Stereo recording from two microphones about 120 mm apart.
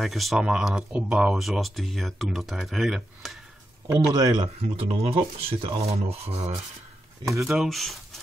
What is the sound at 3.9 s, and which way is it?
Speech, 35° right (ahead or behind).